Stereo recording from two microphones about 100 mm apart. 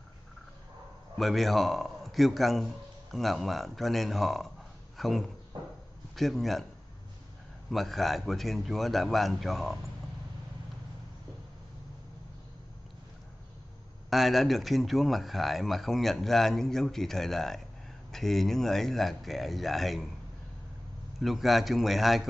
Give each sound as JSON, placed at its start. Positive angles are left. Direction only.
{"t": 1.1, "sound": "speech", "side_deg": 0}
{"t": 4.9, "sound": "a sound", "side_deg": 0}
{"t": 5.5, "sound": "a sound", "side_deg": -45}
{"t": 6.1, "sound": "speech", "side_deg": 0}
{"t": 7.7, "sound": "speech", "side_deg": 0}
{"t": 14.1, "sound": "speech", "side_deg": 0}
{"t": 21.2, "sound": "speech", "side_deg": 0}